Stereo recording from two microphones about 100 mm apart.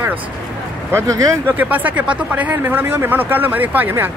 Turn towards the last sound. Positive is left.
turn(degrees=-20)  # may be behind; listen again after turning